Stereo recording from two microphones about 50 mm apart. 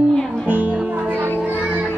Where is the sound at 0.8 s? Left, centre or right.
Right.